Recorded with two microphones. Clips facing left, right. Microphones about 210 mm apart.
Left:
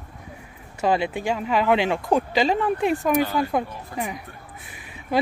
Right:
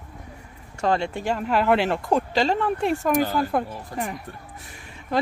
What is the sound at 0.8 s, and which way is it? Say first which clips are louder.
Speech: left 1 dB; 5° left (ahead or behind).